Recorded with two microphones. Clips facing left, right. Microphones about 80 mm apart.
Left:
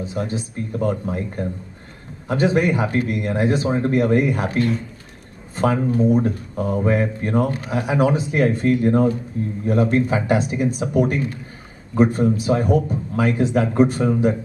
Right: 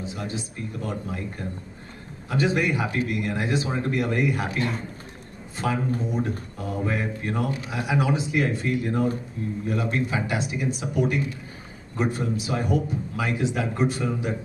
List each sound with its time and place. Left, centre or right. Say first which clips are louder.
0.0 s speech: left 6 dB; left
5.9 s speech: left 10 dB; left